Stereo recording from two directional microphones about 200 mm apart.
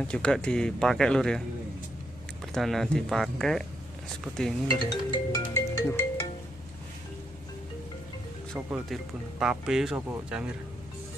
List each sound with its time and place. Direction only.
0.1 s speech: 5° left (ahead or behind)
2.5 s speech: centre (ahead or behind)
4.8 s music: 25° left (ahead or behind)
5.5 s music: 10° left (ahead or behind)
8.6 s speech: 5° right (ahead or behind)